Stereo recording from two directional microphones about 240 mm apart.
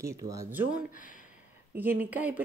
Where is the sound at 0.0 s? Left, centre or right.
Centre.